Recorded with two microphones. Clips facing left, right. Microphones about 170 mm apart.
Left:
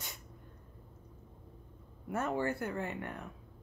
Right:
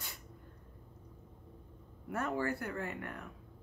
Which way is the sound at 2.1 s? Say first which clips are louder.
Left 2 dB; 25° left (ahead or behind).